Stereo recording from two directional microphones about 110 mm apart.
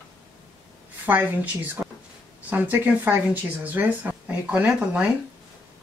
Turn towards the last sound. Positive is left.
turn(degrees=-10)  # may be behind; listen again after turning